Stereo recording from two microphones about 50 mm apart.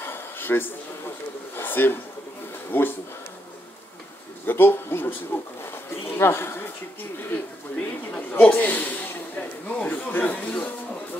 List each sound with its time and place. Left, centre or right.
0.0 s a sound: left
2.7 s speech: left
4.5 s speech: left
7.7 s speech: left
9.4 s speech: left